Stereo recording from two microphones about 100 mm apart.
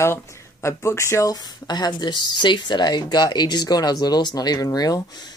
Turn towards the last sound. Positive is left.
turn(degrees=35)  # may be behind; listen again after turning